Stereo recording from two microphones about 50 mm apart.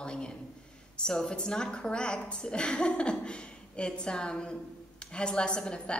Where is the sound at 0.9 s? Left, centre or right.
Centre.